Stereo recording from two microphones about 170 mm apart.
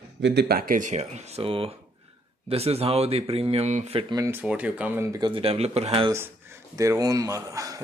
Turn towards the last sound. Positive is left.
turn(degrees=-20)  # may be behind; listen again after turning